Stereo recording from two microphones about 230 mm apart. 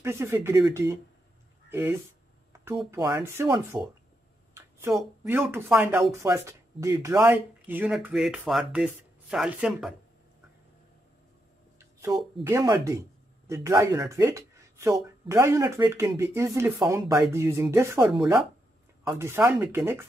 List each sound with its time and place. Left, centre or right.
0.0 s speech: centre
4.9 s speech: centre
11.8 s a sound: centre
12.4 s speech: centre